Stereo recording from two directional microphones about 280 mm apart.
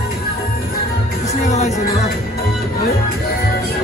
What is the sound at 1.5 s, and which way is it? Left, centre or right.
Music, left.